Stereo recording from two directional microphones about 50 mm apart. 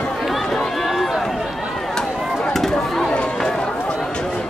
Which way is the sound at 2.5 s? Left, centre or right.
Centre.